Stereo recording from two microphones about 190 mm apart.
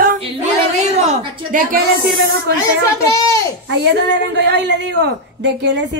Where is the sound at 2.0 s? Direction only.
60° right (ahead or behind).